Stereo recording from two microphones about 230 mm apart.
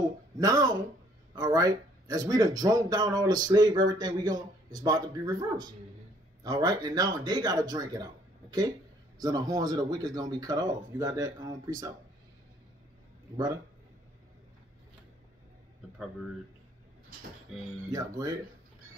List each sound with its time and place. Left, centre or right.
0.4 s a man's voice: centre
17.8 s a man's voice: centre